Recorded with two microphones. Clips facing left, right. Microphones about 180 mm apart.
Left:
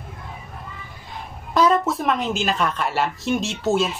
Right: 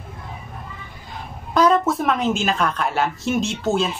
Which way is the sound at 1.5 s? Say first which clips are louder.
Right 1 dB; centre (ahead or behind).